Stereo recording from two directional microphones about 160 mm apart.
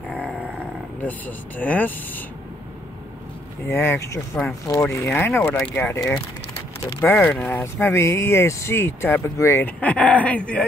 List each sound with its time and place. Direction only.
0.1 s a sound: 5° left (ahead or behind)
1.0 s speech: 10° left (ahead or behind)
3.6 s speech: 15° left (ahead or behind)
5.9 s speech: 20° left (ahead or behind)